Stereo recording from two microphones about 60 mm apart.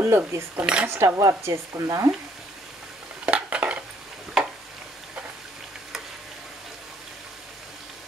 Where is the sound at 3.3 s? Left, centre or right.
Right.